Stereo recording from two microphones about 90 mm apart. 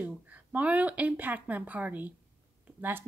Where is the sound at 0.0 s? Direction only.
15° right (ahead or behind).